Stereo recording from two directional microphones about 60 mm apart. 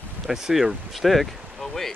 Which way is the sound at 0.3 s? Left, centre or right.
Centre.